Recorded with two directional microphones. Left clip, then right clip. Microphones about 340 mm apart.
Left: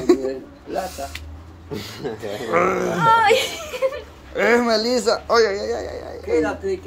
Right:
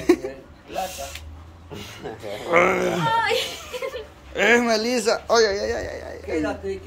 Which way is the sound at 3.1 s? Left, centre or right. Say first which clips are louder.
Left 9 dB; centre.